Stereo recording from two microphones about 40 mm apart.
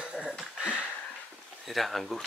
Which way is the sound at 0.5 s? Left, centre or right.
Right.